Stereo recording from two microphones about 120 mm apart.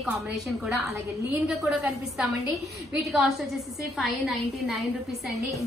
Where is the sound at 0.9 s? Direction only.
25° right (ahead or behind).